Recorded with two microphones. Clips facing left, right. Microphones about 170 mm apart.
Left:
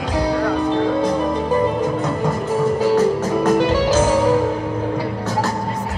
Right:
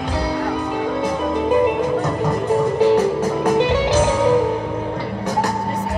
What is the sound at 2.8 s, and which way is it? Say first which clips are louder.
Music: right 2 dB; 15° right (ahead or behind).